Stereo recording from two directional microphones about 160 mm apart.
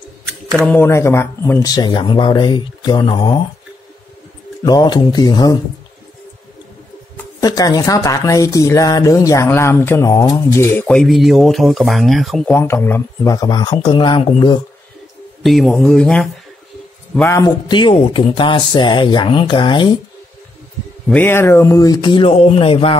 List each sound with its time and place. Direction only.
0.7 s speech: 15° left (ahead or behind)
4.6 s speech: 25° left (ahead or behind)
7.3 s speech: 25° left (ahead or behind)
15.4 s speech: centre (ahead or behind)
17.3 s speech: 25° left (ahead or behind)
21.1 s speech: 10° left (ahead or behind); by 22.9 s 35° left (ahead or behind)